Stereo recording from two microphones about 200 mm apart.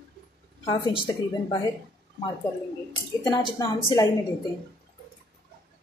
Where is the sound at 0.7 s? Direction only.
25° left (ahead or behind).